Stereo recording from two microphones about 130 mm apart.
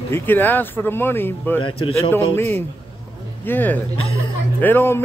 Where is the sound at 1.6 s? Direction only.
45° left (ahead or behind).